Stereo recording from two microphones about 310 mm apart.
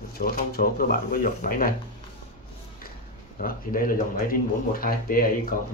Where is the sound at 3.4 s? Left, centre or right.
Left.